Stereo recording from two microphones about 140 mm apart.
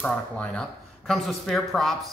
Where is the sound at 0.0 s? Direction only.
5° left (ahead or behind).